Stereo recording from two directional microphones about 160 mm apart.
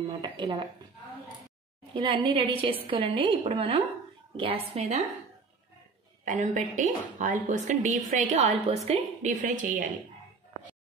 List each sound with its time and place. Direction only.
0.0 s speech: 25° right (ahead or behind)
2.0 s a woman's voice: 35° right (ahead or behind)
6.2 s a woman's voice: 50° right (ahead or behind)